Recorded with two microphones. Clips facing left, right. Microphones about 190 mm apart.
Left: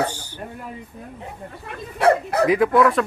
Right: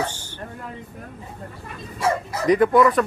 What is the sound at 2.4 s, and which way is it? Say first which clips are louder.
Speech: right 1 dB; 5° left (ahead or behind).